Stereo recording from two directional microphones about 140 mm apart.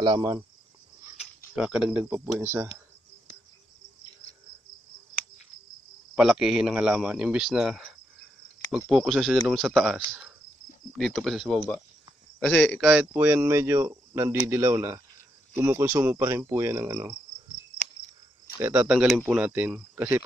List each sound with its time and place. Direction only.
0.0 s cricket: 25° right (ahead or behind)
1.5 s speech: 5° right (ahead or behind)
6.1 s speech: 5° right (ahead or behind)
12.4 s speech: 10° left (ahead or behind)
12.8 s speech: 10° right (ahead or behind)
18.6 s speech: 10° right (ahead or behind)